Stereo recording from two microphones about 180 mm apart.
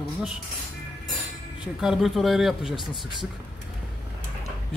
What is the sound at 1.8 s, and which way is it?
Speech, centre (ahead or behind).